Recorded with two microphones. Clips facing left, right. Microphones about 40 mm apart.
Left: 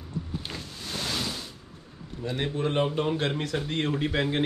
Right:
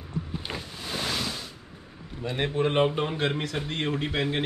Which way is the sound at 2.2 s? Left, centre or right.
Right.